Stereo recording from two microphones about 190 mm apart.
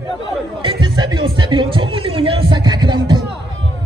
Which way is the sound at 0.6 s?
25° right (ahead or behind).